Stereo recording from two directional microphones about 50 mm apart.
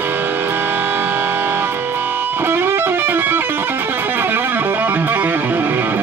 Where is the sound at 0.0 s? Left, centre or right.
Right.